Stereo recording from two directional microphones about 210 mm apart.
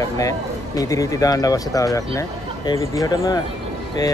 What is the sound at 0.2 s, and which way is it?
Speech, 15° left (ahead or behind).